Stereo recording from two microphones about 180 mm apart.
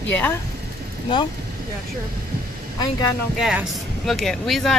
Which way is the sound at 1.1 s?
25° left (ahead or behind).